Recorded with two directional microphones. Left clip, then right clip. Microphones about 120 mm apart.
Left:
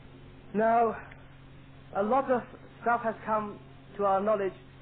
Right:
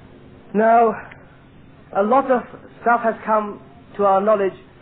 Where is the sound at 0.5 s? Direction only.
35° left (ahead or behind).